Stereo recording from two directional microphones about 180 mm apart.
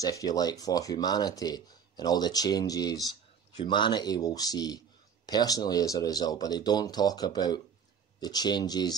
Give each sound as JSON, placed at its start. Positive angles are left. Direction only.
{"t": 0.0, "sound": "speech", "side_deg": 20}